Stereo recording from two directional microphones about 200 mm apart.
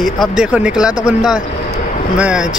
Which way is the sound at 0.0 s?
Centre (ahead or behind).